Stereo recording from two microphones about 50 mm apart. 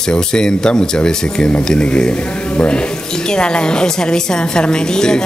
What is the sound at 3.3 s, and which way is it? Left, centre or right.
Speech, centre.